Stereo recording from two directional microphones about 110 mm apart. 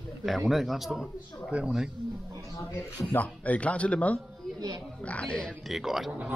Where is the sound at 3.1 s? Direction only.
15° left (ahead or behind); by 6.4 s 10° right (ahead or behind).